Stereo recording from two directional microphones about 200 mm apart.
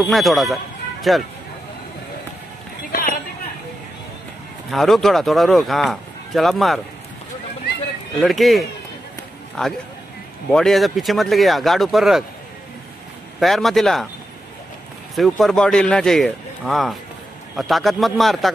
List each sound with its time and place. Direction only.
0.0 s speech: centre (ahead or behind)
2.9 s a sound: 45° left (ahead or behind)
4.6 s speech: centre (ahead or behind)
8.2 s speech: centre (ahead or behind)
13.4 s speech: centre (ahead or behind)
15.1 s speech: centre (ahead or behind)